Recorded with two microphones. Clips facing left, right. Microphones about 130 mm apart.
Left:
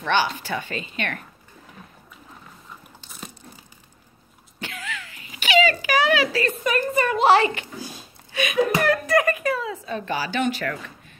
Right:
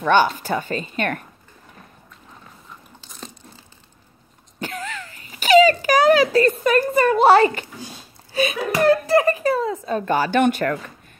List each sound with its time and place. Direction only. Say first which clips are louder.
0.0 s a woman's voice: right 6 dB; 45° right (ahead or behind)
4.6 s a sound: right 5 dB; 40° right (ahead or behind)
8.3 s speech: left 1 dB; 35° right (ahead or behind); by 10.8 s 50° right (ahead or behind)